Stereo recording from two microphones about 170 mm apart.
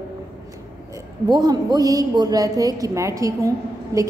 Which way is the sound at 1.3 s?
25° right (ahead or behind).